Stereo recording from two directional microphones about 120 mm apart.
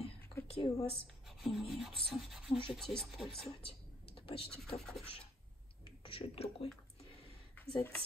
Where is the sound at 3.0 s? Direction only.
Centre (ahead or behind).